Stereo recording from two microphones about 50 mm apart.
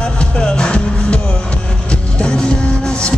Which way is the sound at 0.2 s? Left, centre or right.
Centre.